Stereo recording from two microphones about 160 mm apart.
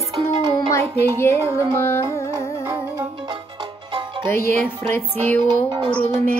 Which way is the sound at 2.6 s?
20° right (ahead or behind).